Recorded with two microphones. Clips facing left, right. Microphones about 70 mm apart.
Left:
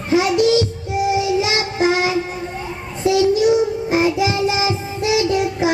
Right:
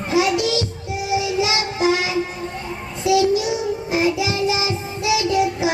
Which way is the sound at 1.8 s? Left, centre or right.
Left.